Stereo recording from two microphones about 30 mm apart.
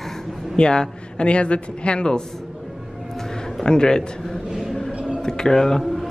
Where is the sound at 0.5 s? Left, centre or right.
Left.